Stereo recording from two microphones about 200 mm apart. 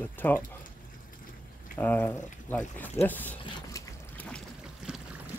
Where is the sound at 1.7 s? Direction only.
10° left (ahead or behind).